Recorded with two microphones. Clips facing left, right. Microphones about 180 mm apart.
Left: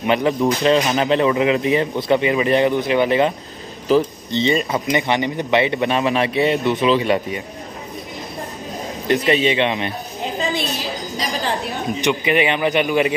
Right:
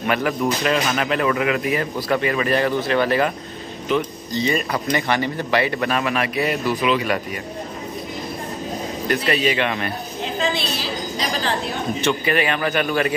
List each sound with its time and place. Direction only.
0.0 s speech: 25° left (ahead or behind)
9.0 s speech: 20° left (ahead or behind)
12.0 s speech: 20° left (ahead or behind)